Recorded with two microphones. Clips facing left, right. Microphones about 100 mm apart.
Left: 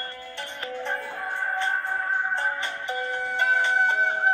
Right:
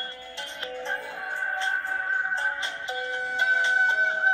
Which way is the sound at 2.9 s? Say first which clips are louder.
Left 2 dB; 55° left (ahead or behind).